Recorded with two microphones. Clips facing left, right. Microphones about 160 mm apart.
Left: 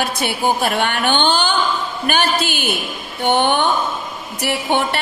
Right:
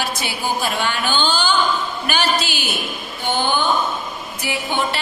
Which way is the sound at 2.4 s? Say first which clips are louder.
Left 4 dB; 55° left (ahead or behind).